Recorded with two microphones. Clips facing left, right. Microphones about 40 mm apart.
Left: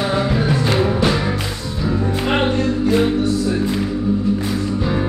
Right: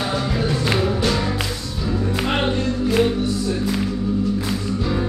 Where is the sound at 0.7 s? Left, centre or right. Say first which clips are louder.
Left 2 dB; centre.